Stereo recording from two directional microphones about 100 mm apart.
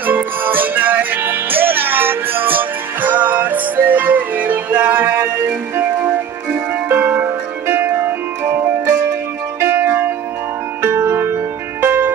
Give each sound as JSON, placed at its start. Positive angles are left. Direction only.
{"t": 0.0, "sound": "music", "side_deg": -20}